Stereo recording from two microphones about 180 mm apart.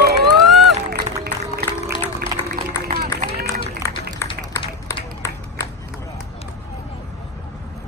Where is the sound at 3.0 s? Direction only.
55° right (ahead or behind).